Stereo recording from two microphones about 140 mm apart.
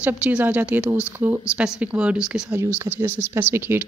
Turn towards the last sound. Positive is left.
turn(degrees=-15)  # may be behind; listen again after turning